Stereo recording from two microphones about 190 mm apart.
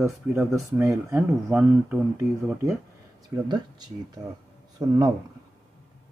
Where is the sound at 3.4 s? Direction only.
20° right (ahead or behind).